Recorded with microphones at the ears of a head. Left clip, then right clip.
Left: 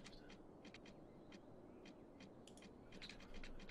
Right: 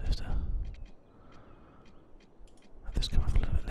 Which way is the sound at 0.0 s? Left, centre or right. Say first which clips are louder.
Right 14 dB; right.